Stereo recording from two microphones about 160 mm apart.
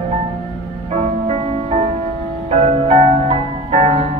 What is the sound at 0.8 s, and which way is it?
Music, 40° right (ahead or behind).